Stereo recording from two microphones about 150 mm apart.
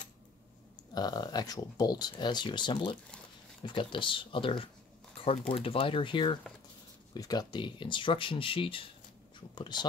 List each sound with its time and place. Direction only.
0.9 s speech: 25° left (ahead or behind)